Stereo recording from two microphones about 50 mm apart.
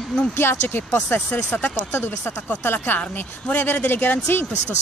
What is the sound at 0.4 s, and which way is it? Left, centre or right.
Speech, left.